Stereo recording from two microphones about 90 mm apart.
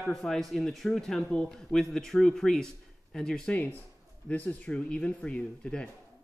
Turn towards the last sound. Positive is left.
turn(degrees=10)  # may be behind; listen again after turning